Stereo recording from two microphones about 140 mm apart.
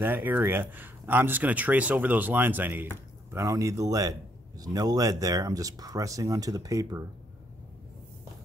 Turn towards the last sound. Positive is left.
turn(degrees=-25)  # may be behind; listen again after turning